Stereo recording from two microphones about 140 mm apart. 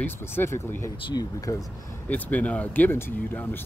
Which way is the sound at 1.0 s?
30° left (ahead or behind).